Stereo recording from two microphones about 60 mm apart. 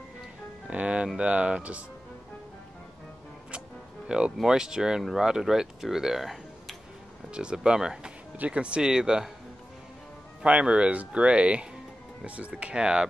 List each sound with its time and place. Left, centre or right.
0.7 s music: centre
1.0 s speech: centre
4.4 s speech: centre
7.3 s speech: centre
10.4 s speech: centre